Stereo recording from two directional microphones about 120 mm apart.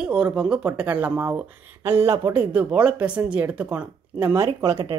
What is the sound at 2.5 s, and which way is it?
Speech, 10° right (ahead or behind).